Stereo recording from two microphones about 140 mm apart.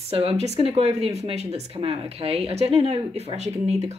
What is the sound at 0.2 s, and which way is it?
Speech, 45° right (ahead or behind).